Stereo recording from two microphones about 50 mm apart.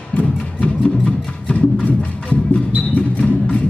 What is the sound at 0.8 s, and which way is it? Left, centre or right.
Music, left.